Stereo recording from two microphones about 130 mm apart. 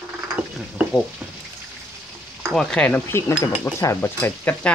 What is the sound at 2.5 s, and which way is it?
Stir, 5° left (ahead or behind).